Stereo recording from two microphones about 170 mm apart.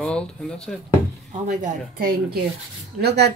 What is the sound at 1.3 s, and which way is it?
Speech, 45° right (ahead or behind).